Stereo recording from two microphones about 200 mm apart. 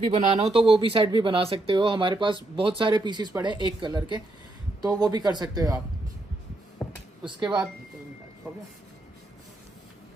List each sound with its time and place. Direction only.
0.4 s speech: 25° right (ahead or behind)
6.8 s a sound: 5° left (ahead or behind)
7.2 s speech: 20° right (ahead or behind)
8.5 s speech: 5° right (ahead or behind)